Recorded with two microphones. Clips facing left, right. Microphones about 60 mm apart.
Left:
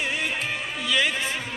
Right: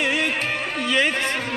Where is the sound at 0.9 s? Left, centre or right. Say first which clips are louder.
Right 3 dB; right.